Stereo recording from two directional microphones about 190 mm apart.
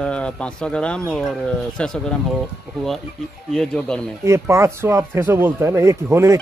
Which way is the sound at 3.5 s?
5° left (ahead or behind).